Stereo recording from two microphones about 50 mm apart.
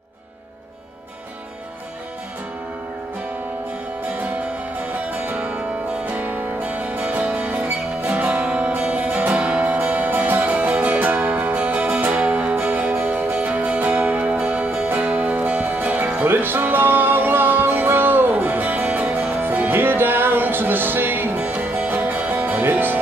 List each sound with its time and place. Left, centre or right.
5.1 s music: right
8.5 s music: centre
9.4 s music: right
12.6 s music: right
13.4 s music: right
21.5 s music: right
21.8 s music: right